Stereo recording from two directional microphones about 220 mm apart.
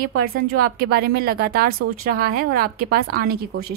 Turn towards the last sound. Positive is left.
turn(degrees=-45)  # may be behind; listen again after turning